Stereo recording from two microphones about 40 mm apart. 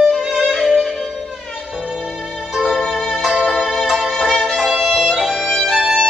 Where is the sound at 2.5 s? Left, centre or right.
Centre.